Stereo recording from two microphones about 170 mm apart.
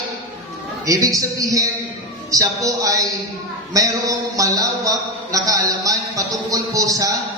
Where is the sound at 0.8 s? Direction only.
20° right (ahead or behind).